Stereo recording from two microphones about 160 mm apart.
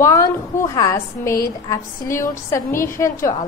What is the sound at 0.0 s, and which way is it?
A woman's voice, 20° left (ahead or behind).